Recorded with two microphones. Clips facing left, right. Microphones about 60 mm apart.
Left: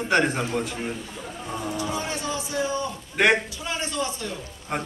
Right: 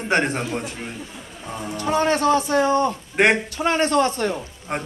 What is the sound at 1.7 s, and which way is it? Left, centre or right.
Speech, right.